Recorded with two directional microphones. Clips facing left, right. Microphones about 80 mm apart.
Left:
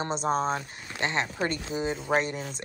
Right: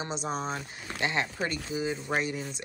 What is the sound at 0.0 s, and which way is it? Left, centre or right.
Speech, left.